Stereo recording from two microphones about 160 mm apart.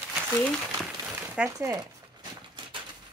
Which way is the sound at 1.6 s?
20° right (ahead or behind).